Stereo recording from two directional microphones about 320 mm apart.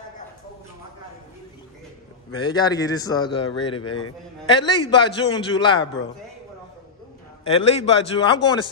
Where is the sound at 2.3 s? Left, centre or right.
Centre.